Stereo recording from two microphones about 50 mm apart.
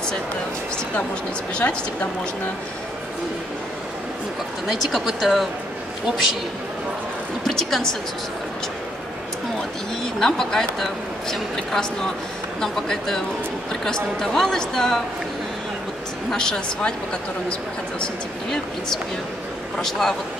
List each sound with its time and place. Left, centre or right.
1.5 s a woman's voice: left
4.6 s speech: centre
7.4 s speech: centre
10.2 s a woman's voice: centre
16.3 s a woman's voice: centre
18.0 s a woman's voice: centre